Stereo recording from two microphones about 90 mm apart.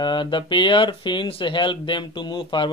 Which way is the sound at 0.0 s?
60° left (ahead or behind).